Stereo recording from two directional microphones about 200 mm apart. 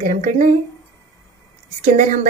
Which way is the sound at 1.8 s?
40° right (ahead or behind).